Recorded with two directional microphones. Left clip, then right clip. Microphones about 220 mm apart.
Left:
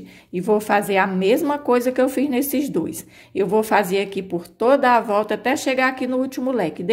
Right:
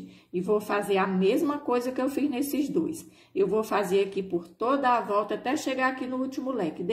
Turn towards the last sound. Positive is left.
turn(degrees=30)  # may be behind; listen again after turning